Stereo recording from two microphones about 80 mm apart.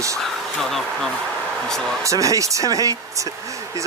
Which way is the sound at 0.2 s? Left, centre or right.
Centre.